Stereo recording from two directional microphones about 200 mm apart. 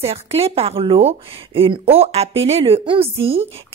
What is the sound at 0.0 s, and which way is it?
Speech, 30° right (ahead or behind).